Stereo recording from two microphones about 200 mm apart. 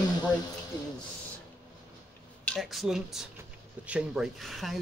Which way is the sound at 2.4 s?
Centre (ahead or behind).